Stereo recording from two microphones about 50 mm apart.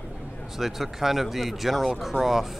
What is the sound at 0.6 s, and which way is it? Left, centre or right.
Speech, centre.